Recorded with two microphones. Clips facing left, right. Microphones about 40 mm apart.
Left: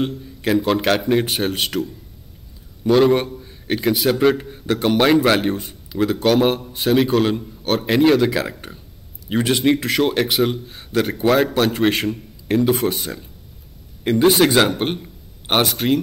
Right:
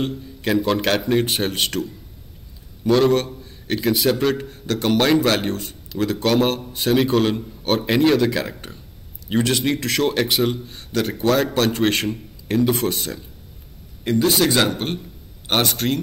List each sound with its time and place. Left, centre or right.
0.0 s a man's voice: centre
14.0 s a man's voice: left
15.6 s a man's voice: centre